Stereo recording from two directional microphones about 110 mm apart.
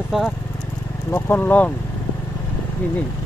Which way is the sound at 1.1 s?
15° left (ahead or behind).